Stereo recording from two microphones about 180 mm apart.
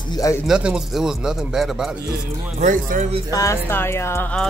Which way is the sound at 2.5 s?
45° right (ahead or behind).